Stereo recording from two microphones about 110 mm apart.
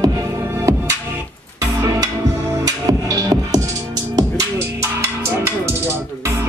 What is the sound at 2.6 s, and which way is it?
Music, 30° right (ahead or behind).